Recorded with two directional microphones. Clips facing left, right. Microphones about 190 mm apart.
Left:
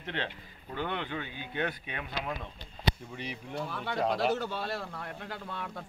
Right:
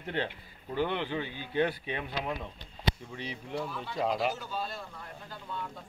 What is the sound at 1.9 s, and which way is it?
Speech, 30° right (ahead or behind).